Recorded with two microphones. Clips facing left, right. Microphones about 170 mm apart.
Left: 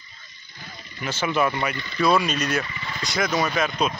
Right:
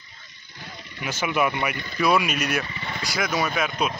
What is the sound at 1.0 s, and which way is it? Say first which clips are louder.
Speech: left 1 dB; 10° right (ahead or behind).